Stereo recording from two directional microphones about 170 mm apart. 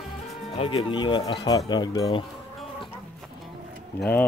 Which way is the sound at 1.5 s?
25° left (ahead or behind).